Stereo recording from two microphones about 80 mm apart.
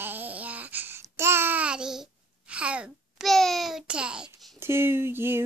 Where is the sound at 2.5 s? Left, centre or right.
Centre.